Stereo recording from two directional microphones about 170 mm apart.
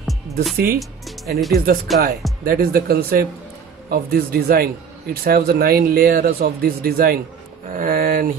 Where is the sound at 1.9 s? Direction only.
Centre (ahead or behind).